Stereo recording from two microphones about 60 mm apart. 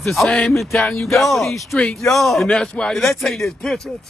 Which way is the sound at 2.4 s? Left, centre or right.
Centre.